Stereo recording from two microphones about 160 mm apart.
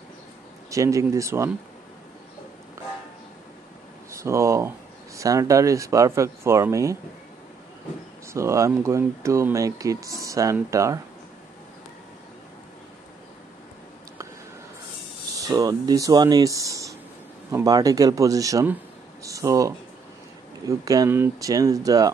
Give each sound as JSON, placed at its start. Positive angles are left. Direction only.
{"t": 0.7, "sound": "speech", "side_deg": -20}
{"t": 4.1, "sound": "speech", "side_deg": -20}
{"t": 8.3, "sound": "speech", "side_deg": -15}
{"t": 15.3, "sound": "speech", "side_deg": -20}